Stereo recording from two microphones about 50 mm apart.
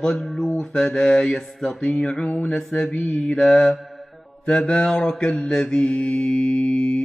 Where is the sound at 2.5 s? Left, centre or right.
Left.